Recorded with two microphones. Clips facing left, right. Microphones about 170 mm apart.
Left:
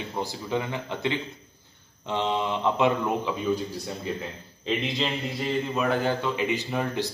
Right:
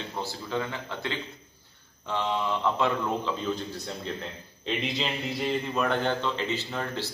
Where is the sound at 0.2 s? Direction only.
15° left (ahead or behind).